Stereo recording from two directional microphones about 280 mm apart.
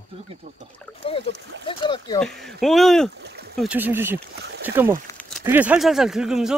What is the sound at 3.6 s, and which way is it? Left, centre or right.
Speech, centre.